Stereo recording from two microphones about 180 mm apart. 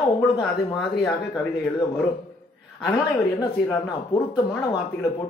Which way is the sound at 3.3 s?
20° left (ahead or behind).